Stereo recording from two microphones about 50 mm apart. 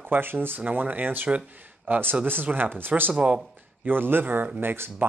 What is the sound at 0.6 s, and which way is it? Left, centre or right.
Speech, right.